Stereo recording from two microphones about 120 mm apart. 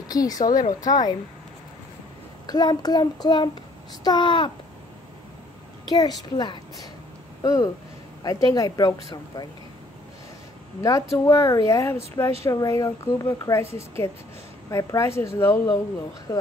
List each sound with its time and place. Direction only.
0.1 s child singing: 30° left (ahead or behind)
2.4 s child singing: 35° left (ahead or behind)
5.9 s child singing: 35° left (ahead or behind)
7.4 s a woman's voice: 25° left (ahead or behind)
8.2 s child singing: 30° left (ahead or behind)
10.8 s a woman's voice: 25° left (ahead or behind)